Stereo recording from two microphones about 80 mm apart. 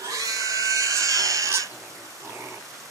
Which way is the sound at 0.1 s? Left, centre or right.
Right.